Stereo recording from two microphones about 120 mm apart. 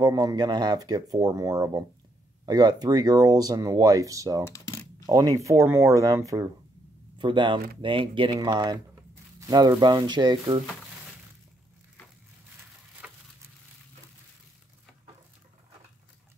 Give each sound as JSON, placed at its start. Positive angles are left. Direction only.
{"t": 0.0, "sound": "speech", "side_deg": -35}
{"t": 7.2, "sound": "speech", "side_deg": -40}
{"t": 13.0, "sound": "a sound", "side_deg": -10}